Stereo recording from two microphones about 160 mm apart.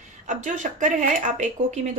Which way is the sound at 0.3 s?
50° right (ahead or behind).